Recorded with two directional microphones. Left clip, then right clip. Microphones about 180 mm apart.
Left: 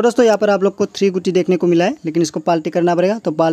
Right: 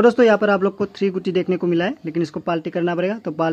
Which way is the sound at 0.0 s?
40° left (ahead or behind).